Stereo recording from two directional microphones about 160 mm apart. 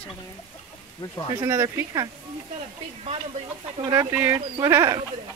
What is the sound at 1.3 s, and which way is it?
Speech, 20° right (ahead or behind).